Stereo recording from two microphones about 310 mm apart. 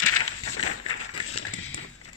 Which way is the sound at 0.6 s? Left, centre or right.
Left.